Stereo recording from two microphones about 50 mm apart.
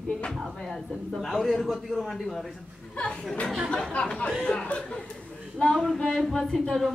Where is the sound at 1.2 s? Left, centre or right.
Centre.